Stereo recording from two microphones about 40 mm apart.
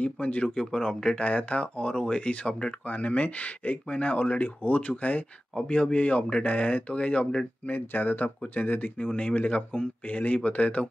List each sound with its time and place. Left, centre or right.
0.0 s speech: left
0.6 s speech: centre
2.9 s speech: left
7.6 s speech: left
8.9 s speech: left